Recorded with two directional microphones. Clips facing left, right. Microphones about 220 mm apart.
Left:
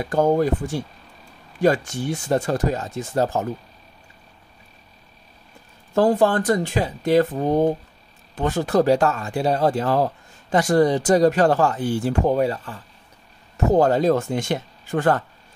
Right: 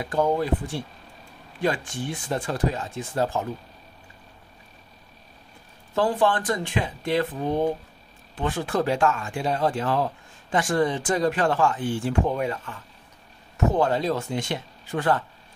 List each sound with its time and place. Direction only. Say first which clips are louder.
0.1 s speech: left 5 dB; 45° left (ahead or behind)
5.9 s speech: left 5 dB; 45° left (ahead or behind)